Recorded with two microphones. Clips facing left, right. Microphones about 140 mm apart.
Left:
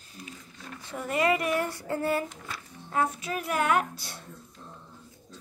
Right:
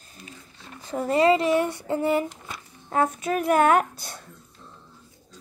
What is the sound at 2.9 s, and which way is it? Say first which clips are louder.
Speech: right 5 dB; 45° right (ahead or behind).